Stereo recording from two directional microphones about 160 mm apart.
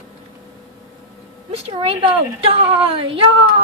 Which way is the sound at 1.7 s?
35° right (ahead or behind).